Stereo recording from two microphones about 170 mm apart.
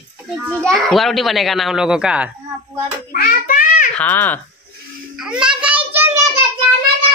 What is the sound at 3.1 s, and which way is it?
Child singing, 55° left (ahead or behind).